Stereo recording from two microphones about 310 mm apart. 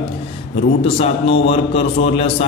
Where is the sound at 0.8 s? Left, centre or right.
Centre.